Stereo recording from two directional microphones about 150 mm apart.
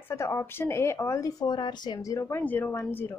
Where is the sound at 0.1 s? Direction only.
20° left (ahead or behind).